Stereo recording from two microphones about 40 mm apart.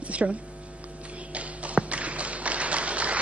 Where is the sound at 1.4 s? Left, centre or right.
Right.